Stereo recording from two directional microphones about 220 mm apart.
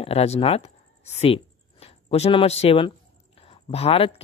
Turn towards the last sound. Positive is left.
turn(degrees=25)  # may be behind; listen again after turning